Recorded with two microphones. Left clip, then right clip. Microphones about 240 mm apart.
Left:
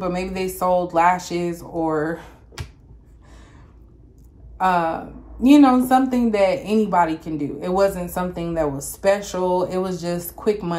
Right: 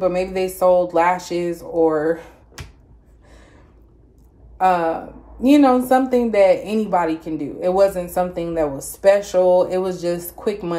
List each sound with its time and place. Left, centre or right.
0.0 s speech: centre
4.6 s speech: centre